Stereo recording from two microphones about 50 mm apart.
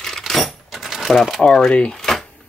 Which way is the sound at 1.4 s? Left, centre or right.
Centre.